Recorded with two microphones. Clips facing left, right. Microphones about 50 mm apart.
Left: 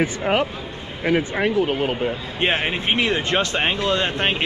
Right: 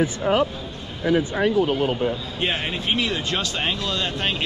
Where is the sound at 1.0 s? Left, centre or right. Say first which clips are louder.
Even; left.